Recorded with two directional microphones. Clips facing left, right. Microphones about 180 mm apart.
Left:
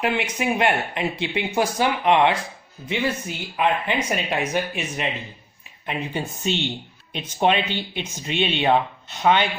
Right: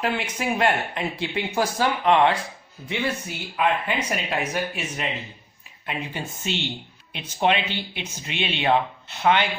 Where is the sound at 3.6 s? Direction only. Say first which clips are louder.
Left 1 dB; 25° left (ahead or behind).